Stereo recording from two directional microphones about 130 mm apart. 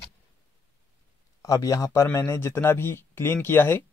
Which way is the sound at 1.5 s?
25° left (ahead or behind).